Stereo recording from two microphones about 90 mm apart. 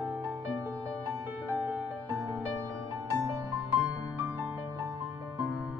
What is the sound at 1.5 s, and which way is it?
Music, 20° right (ahead or behind).